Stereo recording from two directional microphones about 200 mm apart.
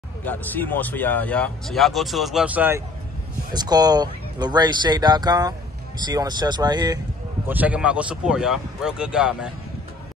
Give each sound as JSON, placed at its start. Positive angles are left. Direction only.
{"t": 0.2, "sound": "speech", "side_deg": 10}
{"t": 3.5, "sound": "speech", "side_deg": -20}
{"t": 7.4, "sound": "speech", "side_deg": -10}